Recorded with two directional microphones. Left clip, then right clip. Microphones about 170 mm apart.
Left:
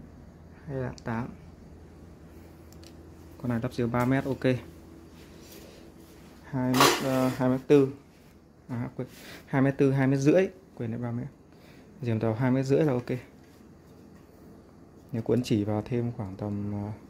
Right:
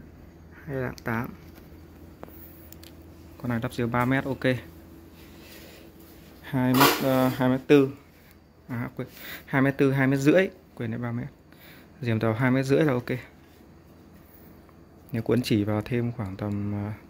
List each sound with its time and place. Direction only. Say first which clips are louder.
0.7 s speech: right 4 dB; 5° right (ahead or behind)
3.4 s speech: right 1 dB; centre (ahead or behind)
6.4 s dishes: right 4 dB; 25° right (ahead or behind)
7.1 s speech: right 3 dB; 20° right (ahead or behind); by 13.3 s 5° right (ahead or behind)
15.1 s speech: right 2 dB; 5° right (ahead or behind)